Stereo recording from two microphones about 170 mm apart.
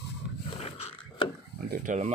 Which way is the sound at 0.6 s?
40° left (ahead or behind).